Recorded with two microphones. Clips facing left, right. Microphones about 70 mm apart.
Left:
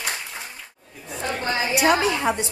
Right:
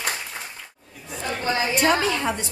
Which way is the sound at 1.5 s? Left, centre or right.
Centre.